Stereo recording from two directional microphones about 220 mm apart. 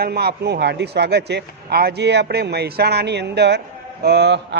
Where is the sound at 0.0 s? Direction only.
45° right (ahead or behind).